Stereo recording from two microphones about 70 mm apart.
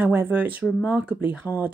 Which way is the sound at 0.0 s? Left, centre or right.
Right.